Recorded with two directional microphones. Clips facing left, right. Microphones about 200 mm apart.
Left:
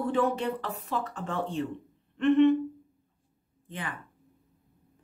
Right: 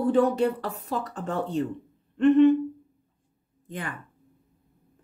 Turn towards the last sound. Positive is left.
turn(degrees=-45)  # may be behind; listen again after turning